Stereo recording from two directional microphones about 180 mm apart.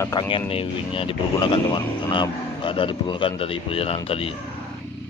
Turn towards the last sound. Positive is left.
turn(degrees=30)  # may be behind; listen again after turning